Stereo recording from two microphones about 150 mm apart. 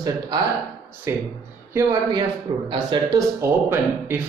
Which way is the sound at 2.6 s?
30° right (ahead or behind).